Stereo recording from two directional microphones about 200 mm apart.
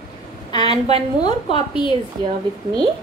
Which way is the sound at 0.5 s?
20° left (ahead or behind).